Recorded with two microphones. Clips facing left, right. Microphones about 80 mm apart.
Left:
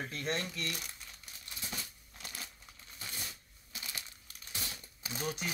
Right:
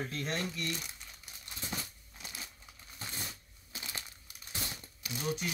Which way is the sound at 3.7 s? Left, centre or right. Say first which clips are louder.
Right 2 dB; right.